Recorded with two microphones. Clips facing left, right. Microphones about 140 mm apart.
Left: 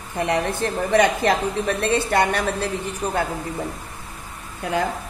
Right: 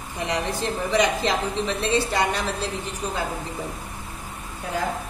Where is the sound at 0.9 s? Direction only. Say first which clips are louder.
Left 4 dB; 55° left (ahead or behind).